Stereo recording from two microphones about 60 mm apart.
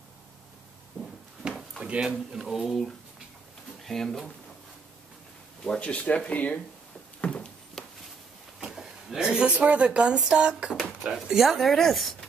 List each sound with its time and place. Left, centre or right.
1.8 s speech: centre
3.8 s speech: centre
5.7 s speech: centre
7.2 s a sound: centre
8.5 s a sound: centre
9.6 s speech: right; by 12.2 s centre